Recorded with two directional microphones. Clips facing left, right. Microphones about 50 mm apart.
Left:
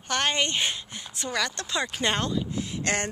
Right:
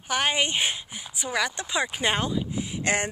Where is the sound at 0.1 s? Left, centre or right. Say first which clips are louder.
Right 1 dB; centre.